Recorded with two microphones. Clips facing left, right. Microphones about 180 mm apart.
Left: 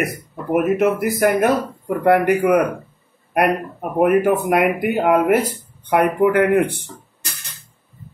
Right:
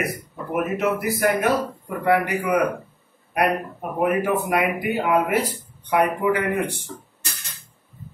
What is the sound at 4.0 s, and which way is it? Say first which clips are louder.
A man's voice: left 6 dB; 55° left (ahead or behind).